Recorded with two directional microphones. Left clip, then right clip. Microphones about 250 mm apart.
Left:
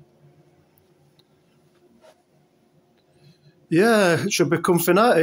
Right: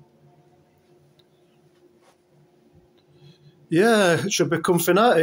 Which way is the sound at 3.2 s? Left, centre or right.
Centre.